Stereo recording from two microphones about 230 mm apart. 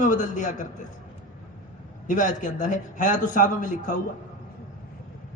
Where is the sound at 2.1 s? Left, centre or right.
Left.